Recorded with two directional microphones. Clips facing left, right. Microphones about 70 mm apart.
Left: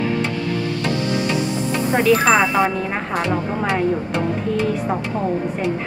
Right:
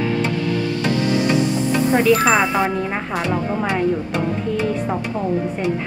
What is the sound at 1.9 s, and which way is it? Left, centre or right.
Speech, centre.